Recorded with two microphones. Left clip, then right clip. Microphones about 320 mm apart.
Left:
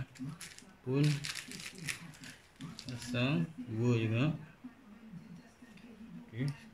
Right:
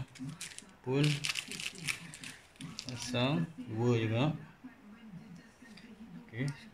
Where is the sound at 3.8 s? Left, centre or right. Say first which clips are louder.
Right 2 dB; centre.